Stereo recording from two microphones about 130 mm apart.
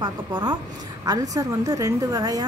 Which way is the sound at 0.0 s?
35° right (ahead or behind).